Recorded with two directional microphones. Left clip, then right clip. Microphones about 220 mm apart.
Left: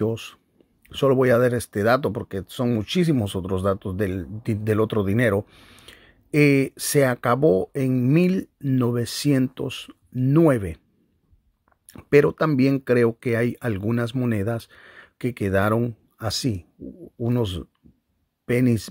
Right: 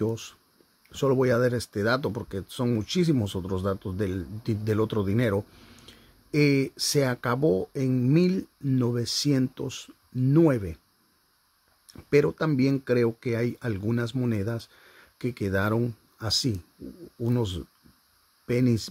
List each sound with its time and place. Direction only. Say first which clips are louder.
0.0 s speech: left 4 dB; centre (ahead or behind)
12.0 s speech: left 6 dB; 5° left (ahead or behind)